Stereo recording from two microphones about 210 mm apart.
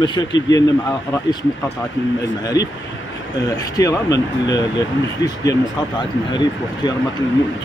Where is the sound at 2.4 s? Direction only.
15° left (ahead or behind).